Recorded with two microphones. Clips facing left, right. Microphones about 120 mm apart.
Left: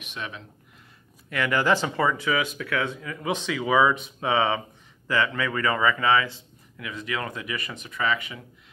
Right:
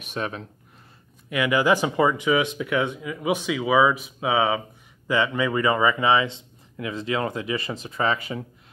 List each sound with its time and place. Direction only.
0.0 s speech: 40° right (ahead or behind)
1.3 s speech: 15° right (ahead or behind); by 8.5 s 35° right (ahead or behind)